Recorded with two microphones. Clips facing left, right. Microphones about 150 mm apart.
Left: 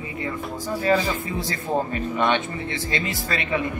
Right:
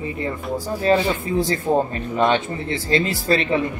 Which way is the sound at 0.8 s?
30° right (ahead or behind).